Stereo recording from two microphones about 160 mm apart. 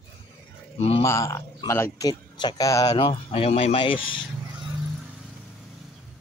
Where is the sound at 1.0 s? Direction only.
20° left (ahead or behind).